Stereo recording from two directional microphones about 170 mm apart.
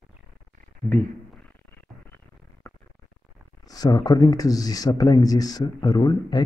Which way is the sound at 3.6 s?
20° left (ahead or behind).